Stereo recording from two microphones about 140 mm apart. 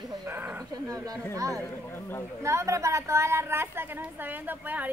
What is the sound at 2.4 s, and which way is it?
A woman's voice, 20° right (ahead or behind).